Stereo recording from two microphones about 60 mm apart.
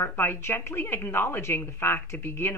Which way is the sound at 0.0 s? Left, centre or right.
Left.